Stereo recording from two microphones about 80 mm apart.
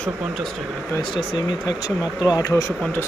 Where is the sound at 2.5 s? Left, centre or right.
Left.